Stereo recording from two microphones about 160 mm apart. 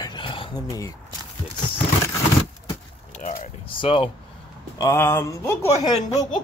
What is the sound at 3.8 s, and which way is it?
Speech, 35° left (ahead or behind).